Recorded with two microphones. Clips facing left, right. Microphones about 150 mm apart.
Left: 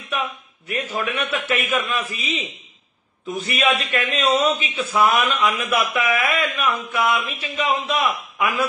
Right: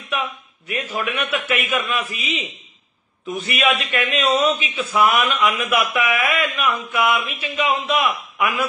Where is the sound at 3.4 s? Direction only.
30° left (ahead or behind).